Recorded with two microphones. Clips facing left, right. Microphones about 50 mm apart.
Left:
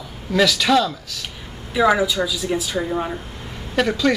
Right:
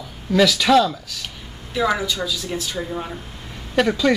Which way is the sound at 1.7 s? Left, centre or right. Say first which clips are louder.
Left 4 dB; centre.